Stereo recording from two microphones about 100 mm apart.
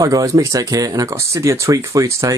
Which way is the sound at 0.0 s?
35° right (ahead or behind).